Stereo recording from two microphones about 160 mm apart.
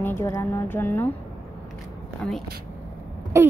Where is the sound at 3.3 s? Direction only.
20° right (ahead or behind).